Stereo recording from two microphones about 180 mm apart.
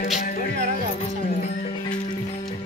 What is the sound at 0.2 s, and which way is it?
Music, 50° left (ahead or behind).